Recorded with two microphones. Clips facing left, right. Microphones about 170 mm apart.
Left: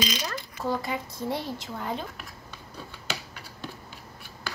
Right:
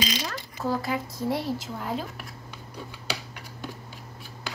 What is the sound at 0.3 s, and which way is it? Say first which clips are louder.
Speech: right 1 dB; 5° right (ahead or behind).